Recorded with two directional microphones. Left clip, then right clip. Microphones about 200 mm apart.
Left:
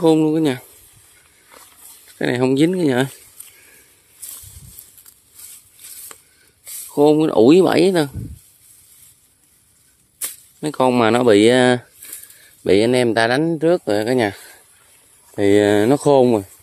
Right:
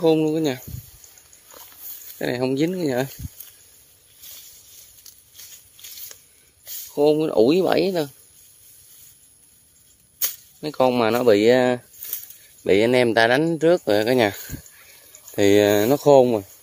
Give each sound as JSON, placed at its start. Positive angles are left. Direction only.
{"t": 0.0, "sound": "speech", "side_deg": 20}
{"t": 2.1, "sound": "speech", "side_deg": 20}
{"t": 6.9, "sound": "speech", "side_deg": 25}
{"t": 10.2, "sound": "speech", "side_deg": 20}
{"t": 12.6, "sound": "speech", "side_deg": 15}